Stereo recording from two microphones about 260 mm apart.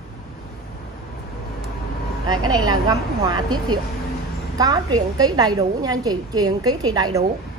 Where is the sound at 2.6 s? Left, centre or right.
Centre.